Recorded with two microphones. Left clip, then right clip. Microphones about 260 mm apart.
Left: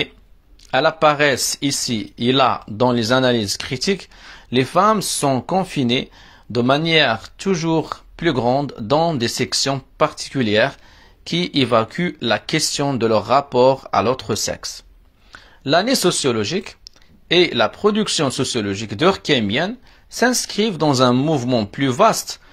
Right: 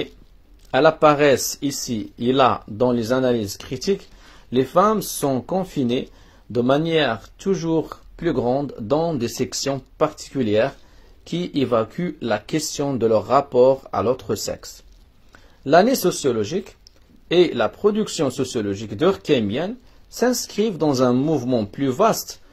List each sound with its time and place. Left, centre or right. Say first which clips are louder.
0.7 s speech: even; left